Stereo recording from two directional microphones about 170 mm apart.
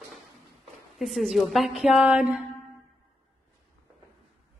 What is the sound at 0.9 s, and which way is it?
A woman's voice, centre (ahead or behind).